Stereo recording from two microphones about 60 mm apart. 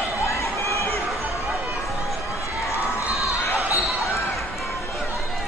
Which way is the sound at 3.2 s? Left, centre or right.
Left.